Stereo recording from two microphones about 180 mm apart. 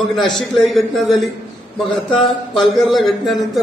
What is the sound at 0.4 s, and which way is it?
Speech, centre (ahead or behind).